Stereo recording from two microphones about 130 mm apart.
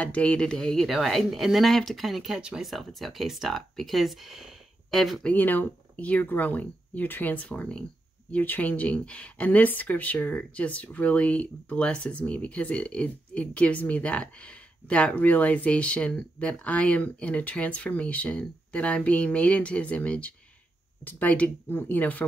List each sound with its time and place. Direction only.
0.0 s speech: 10° left (ahead or behind)
5.3 s speech: 15° left (ahead or behind)